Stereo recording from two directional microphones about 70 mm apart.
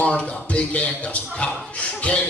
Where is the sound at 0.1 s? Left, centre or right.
Centre.